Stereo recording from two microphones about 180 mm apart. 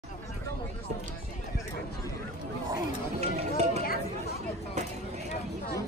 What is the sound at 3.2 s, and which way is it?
Run, 35° right (ahead or behind).